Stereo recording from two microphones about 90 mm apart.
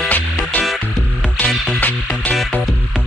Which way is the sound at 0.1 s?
20° left (ahead or behind).